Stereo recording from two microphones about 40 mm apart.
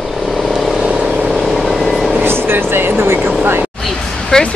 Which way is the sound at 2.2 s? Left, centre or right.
Right.